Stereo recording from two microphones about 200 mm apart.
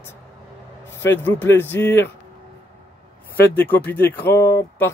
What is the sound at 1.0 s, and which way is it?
Speech, 10° left (ahead or behind).